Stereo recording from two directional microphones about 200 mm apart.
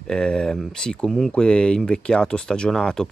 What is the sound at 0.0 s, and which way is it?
Speech, 5° left (ahead or behind).